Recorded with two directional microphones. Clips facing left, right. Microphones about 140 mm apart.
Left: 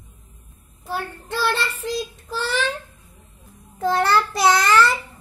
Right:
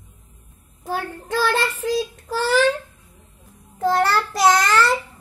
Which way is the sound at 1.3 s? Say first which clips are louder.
Right 3 dB; 45° right (ahead or behind).